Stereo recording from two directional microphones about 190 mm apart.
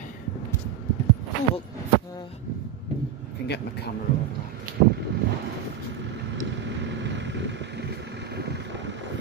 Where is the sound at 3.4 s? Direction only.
60° left (ahead or behind).